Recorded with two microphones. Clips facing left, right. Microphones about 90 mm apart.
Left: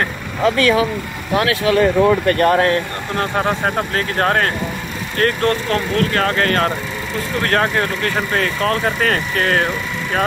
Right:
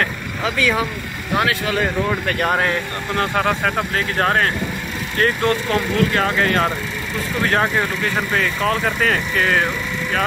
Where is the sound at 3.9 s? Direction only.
45° left (ahead or behind).